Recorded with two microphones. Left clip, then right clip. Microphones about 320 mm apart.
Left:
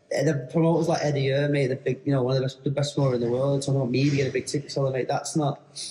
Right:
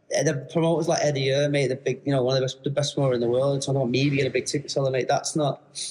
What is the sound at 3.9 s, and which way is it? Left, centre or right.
Speech, centre.